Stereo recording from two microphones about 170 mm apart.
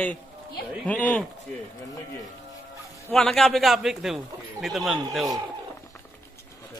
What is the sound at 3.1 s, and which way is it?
A man's voice, centre (ahead or behind).